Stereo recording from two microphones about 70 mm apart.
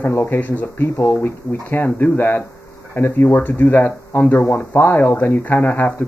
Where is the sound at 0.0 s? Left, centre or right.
Left.